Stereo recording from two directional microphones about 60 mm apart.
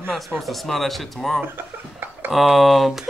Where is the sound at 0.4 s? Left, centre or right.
Centre.